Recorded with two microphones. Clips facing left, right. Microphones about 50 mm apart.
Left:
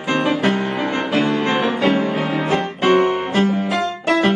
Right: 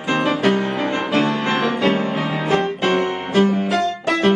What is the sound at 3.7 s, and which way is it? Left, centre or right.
Music, centre.